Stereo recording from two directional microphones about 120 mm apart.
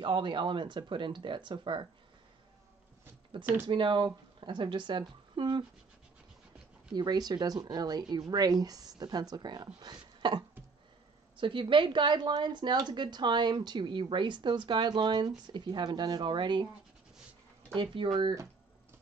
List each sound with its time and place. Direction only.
0.0 s a woman's voice: 40° right (ahead or behind)
3.6 s a woman's voice: 45° right (ahead or behind)
6.9 s a woman's voice: 35° right (ahead or behind)
17.7 s speech: 45° right (ahead or behind)